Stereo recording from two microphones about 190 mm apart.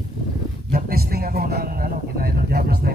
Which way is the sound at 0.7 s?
50° right (ahead or behind).